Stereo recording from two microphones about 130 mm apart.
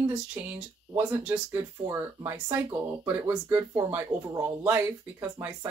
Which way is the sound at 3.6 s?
30° right (ahead or behind).